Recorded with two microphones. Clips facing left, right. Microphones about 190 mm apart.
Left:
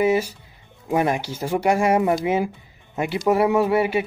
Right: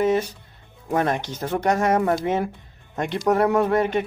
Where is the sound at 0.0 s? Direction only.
10° left (ahead or behind).